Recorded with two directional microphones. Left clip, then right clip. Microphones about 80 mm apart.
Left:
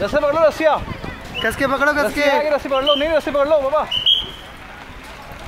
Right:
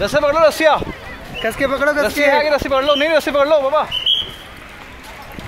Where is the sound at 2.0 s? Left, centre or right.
Right.